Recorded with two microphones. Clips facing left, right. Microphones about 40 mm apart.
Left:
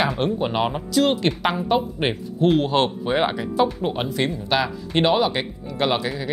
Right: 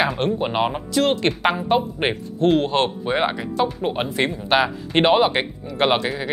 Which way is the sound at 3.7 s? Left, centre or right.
Centre.